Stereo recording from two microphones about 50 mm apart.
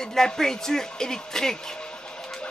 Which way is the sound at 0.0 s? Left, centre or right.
Centre.